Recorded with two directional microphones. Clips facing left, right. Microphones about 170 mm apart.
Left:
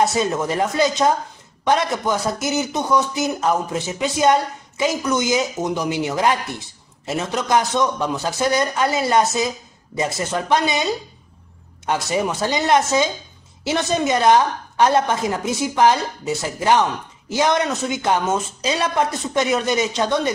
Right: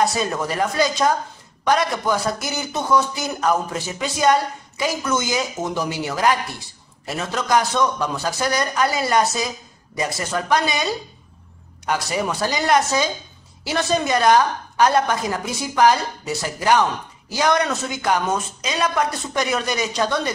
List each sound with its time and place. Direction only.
0.0 s speech: 20° left (ahead or behind)